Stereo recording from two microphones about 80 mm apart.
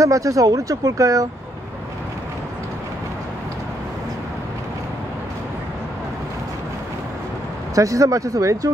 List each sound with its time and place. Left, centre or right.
0.0 s speech: right
7.7 s speech: right